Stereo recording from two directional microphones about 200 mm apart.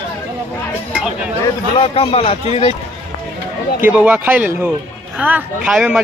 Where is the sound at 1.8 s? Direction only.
30° left (ahead or behind).